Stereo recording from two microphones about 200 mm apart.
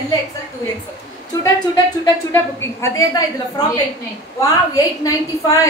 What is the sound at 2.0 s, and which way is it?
A woman's voice, 15° left (ahead or behind).